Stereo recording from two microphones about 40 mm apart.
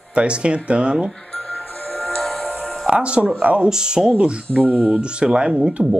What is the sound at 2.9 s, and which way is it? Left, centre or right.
Speech, right.